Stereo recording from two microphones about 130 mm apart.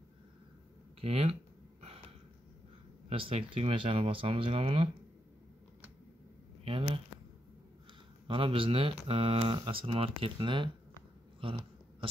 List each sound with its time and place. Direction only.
1.0 s speech: 55° right (ahead or behind)
3.1 s speech: 45° right (ahead or behind)
6.6 s speech: 45° right (ahead or behind)
8.3 s speech: 40° right (ahead or behind)